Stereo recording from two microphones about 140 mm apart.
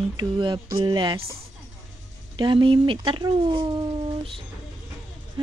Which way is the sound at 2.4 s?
35° right (ahead or behind).